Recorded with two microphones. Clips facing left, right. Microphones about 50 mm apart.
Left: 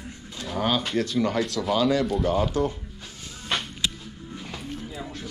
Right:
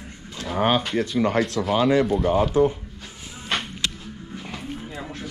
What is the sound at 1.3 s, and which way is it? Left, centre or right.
Speech, right.